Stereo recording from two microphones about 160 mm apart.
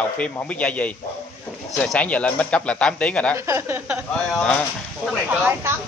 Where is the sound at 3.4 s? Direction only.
15° right (ahead or behind).